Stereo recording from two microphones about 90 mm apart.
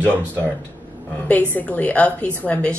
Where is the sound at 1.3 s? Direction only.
20° left (ahead or behind).